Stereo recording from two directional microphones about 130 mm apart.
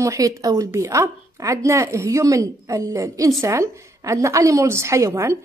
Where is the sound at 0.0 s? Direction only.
25° right (ahead or behind).